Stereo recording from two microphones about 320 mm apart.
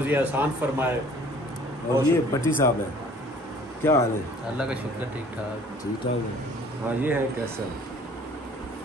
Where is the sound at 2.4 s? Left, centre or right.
Centre.